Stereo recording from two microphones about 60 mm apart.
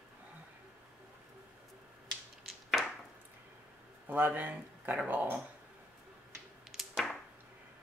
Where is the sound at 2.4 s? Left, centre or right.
Centre.